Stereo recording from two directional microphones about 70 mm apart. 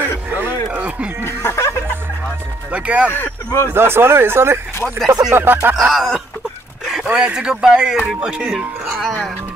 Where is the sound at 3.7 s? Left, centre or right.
Right.